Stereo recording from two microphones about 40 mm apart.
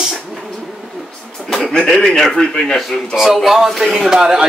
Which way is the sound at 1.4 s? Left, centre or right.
Right.